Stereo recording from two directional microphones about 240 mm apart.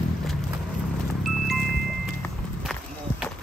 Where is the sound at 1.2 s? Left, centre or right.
Centre.